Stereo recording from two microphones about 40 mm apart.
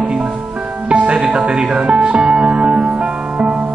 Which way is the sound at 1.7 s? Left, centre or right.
Right.